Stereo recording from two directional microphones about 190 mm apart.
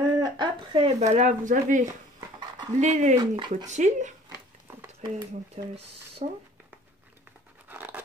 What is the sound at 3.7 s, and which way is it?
Speech, 40° right (ahead or behind).